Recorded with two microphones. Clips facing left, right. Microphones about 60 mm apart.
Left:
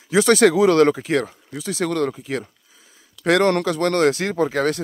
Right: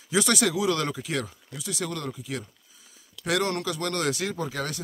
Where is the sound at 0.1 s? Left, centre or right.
Left.